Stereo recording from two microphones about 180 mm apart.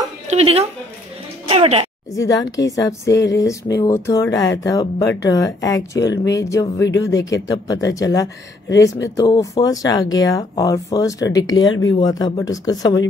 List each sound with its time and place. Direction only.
0.3 s a woman's voice: 35° right (ahead or behind)
2.1 s speech: 20° left (ahead or behind)